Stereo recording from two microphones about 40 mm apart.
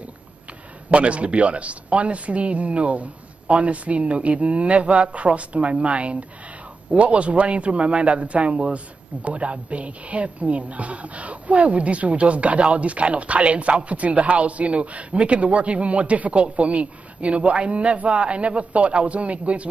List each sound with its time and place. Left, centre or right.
0.8 s a man's voice: right